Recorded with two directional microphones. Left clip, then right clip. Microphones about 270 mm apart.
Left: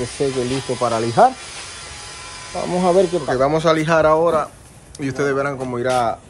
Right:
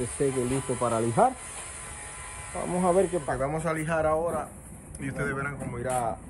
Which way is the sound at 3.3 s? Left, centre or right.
Centre.